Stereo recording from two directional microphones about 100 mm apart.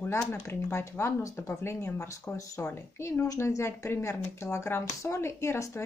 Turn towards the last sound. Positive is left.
turn(degrees=30)  # may be behind; listen again after turning